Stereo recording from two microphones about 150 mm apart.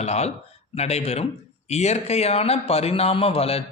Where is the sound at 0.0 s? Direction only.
45° left (ahead or behind).